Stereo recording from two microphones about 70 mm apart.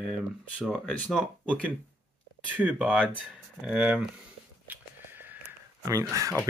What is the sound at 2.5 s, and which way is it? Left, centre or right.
Speech, centre.